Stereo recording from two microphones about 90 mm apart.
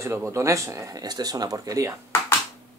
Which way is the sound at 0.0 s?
30° right (ahead or behind).